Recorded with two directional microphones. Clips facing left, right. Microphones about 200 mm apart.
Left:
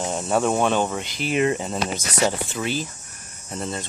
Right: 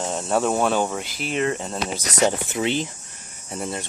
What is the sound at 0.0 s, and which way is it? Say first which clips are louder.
Speech: even; centre (ahead or behind).